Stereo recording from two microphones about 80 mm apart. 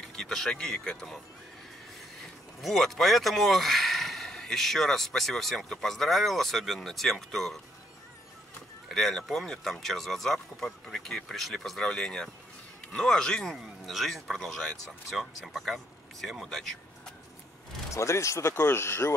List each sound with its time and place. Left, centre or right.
0.0 s speech: centre
2.6 s speech: centre
8.8 s speech: centre
17.9 s speech: left